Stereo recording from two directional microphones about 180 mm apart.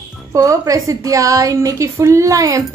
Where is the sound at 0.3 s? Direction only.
20° right (ahead or behind).